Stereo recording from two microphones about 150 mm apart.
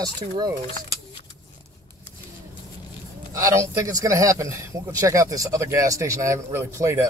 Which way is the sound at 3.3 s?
20° right (ahead or behind).